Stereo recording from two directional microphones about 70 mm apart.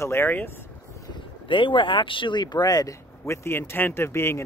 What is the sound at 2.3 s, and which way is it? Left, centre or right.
Speech, left.